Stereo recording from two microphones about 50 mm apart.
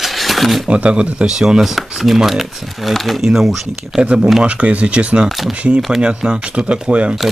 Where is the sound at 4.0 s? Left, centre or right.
Right.